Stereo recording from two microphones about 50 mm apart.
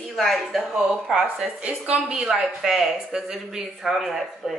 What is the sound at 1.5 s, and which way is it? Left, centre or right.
Speech, right.